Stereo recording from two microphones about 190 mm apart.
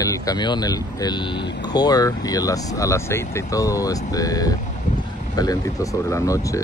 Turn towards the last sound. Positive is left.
turn(degrees=15)  # may be behind; listen again after turning